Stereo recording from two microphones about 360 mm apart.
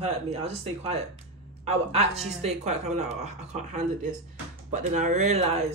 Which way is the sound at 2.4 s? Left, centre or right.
Centre.